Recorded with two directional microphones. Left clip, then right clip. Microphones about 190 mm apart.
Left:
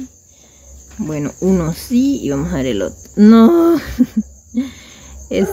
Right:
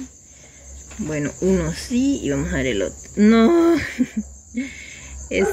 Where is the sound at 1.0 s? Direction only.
20° left (ahead or behind).